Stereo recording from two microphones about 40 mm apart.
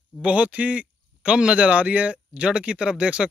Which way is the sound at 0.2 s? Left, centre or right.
Right.